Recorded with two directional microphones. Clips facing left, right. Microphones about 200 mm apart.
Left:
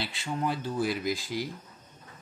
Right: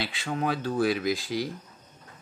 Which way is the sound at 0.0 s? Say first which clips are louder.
Right 2 dB; 90° right.